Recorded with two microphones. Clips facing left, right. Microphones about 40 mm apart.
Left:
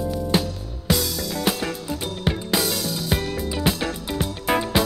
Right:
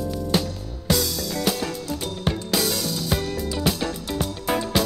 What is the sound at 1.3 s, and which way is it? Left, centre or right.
Music, left.